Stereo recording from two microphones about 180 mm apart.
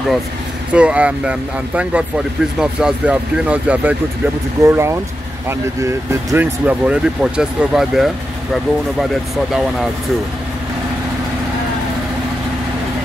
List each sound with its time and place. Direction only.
0.7 s speech: 5° right (ahead or behind)